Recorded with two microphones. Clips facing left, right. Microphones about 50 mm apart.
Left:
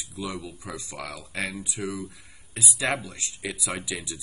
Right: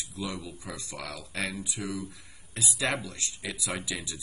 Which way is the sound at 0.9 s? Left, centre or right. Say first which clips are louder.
Left 2 dB; centre.